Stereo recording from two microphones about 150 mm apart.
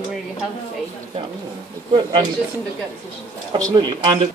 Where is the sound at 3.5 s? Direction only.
30° right (ahead or behind).